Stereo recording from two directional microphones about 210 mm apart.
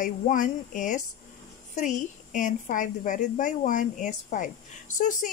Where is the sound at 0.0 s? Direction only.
40° left (ahead or behind).